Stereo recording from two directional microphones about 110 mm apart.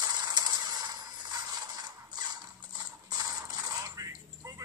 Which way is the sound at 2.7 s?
40° right (ahead or behind).